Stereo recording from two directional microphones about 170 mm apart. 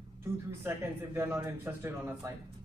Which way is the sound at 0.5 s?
15° right (ahead or behind).